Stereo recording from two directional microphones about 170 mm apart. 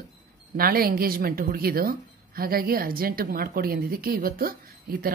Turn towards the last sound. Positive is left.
turn(degrees=-60)  # may be behind; listen again after turning